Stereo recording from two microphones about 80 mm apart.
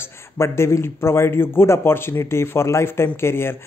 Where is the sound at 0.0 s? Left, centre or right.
Left.